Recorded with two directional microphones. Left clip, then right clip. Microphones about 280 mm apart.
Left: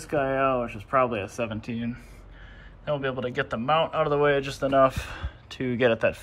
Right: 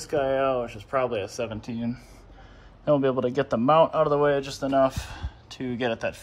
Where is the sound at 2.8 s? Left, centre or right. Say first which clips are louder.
Right 6 dB; right.